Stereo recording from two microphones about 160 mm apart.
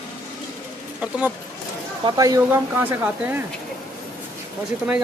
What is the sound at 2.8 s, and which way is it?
Speech, 10° right (ahead or behind).